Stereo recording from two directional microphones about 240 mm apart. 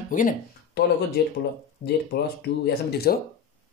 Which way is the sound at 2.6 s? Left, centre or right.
Left.